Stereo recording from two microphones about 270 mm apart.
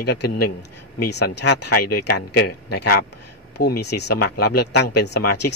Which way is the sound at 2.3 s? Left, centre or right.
Left.